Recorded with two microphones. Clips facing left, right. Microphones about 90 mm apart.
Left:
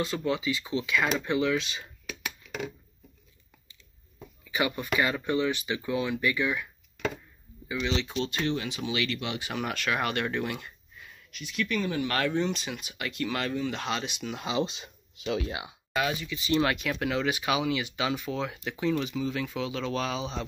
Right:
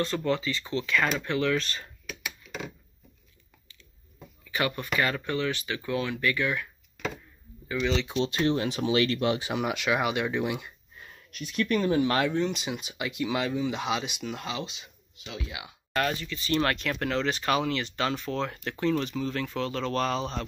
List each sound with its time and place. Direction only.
0.0 s speech: 5° left (ahead or behind)
4.5 s speech: 15° left (ahead or behind)
7.6 s speech: 5° left (ahead or behind)
8.2 s speech: 30° right (ahead or behind)
9.5 s speech: 15° right (ahead or behind)
11.0 s speech: 45° right (ahead or behind); by 12.3 s 25° right (ahead or behind)
12.3 s speech: 5° right (ahead or behind)
12.8 s speech: 20° right (ahead or behind)
14.6 s speech: 35° left (ahead or behind)
15.2 s speech: 55° left (ahead or behind)
15.9 s speech: 5° left (ahead or behind)